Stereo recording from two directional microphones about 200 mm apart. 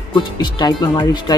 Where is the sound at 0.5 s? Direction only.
20° left (ahead or behind).